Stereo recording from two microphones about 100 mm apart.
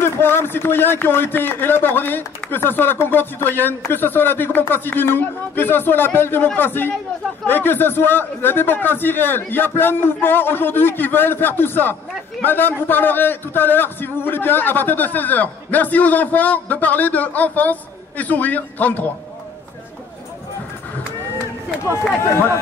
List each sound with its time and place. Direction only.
0.0 s a man's voice: 25° left (ahead or behind)